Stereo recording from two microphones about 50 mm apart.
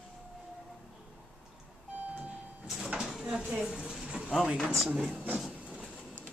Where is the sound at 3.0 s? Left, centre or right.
Centre.